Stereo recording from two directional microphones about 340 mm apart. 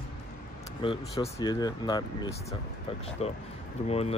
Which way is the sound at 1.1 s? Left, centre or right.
Centre.